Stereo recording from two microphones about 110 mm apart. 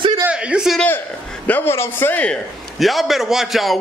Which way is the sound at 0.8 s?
15° left (ahead or behind).